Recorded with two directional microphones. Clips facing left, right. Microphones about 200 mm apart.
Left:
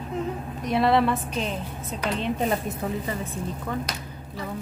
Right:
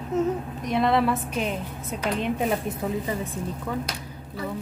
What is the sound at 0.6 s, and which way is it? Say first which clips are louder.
A woman's voice: left 1 dB; centre (ahead or behind).